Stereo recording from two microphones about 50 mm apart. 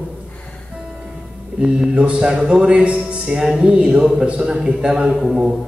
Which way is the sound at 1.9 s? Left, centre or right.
Right.